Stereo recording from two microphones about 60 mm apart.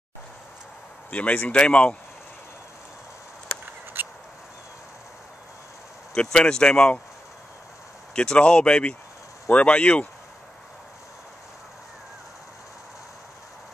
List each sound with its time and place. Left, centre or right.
1.1 s speech: left
3.9 s a sound: right
6.1 s speech: centre
8.1 s speech: centre